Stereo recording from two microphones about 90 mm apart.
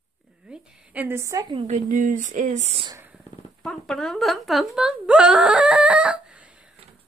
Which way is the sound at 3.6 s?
5° left (ahead or behind).